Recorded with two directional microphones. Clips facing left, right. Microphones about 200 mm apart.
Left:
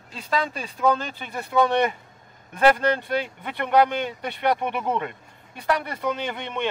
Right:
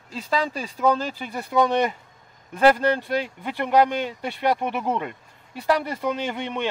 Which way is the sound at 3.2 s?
5° right (ahead or behind).